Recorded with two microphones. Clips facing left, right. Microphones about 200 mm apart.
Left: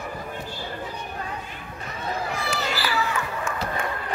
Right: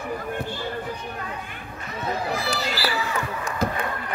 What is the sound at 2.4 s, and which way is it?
Children playing, 35° right (ahead or behind).